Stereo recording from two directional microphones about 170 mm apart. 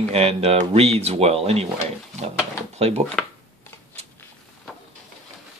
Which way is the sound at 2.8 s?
40° right (ahead or behind).